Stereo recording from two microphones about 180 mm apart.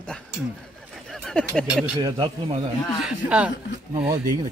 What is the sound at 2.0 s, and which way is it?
Speech, 25° right (ahead or behind).